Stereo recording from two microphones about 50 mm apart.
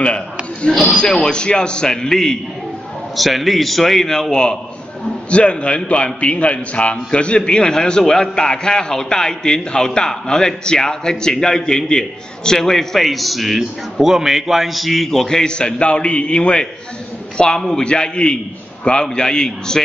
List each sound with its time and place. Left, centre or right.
0.7 s a man's voice: centre
3.2 s a man's voice: centre